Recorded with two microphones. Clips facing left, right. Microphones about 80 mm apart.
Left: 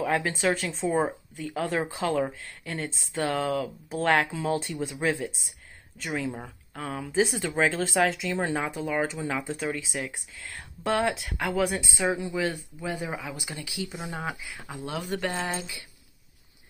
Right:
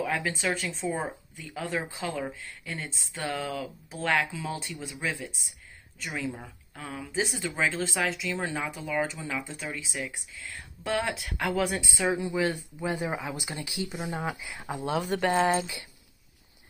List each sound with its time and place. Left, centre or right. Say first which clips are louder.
0.0 s speech: left 4 dB; left
1.3 s speech: left 4 dB; left
11.2 s speech: left 1 dB; centre
12.0 s speech: even; centre
12.3 s speech: right 1 dB; centre
13.8 s speech: right 2 dB; centre
14.1 s speech: right 1 dB; centre